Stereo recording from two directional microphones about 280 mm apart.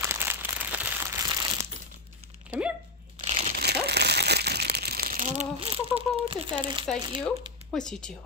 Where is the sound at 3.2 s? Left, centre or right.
Right.